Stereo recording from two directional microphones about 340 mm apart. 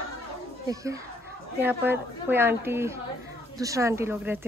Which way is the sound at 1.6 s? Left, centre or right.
Centre.